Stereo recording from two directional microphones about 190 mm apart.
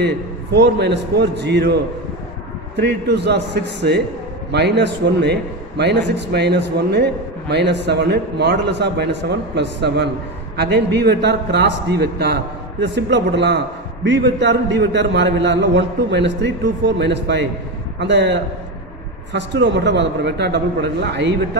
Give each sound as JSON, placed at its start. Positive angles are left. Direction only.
{"t": 0.0, "sound": "a man's voice", "side_deg": -60}
{"t": 2.8, "sound": "a man's voice", "side_deg": -60}